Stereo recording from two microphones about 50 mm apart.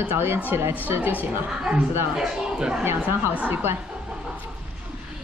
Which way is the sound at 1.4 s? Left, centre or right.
Centre.